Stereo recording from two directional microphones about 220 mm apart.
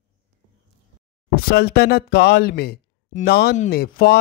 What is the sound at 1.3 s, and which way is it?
A man's voice, 45° left (ahead or behind).